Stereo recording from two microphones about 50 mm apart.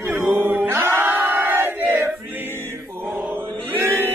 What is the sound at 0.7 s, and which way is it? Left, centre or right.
Battle cry, right.